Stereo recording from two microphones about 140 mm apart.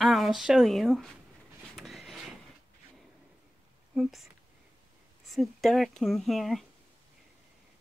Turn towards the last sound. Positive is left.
turn(degrees=0)  # may be behind; listen again after turning